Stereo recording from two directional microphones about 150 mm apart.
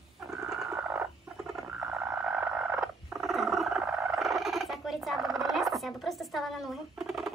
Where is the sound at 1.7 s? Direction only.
15° right (ahead or behind).